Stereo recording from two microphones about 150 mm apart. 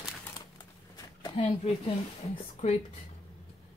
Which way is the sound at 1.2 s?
35° left (ahead or behind).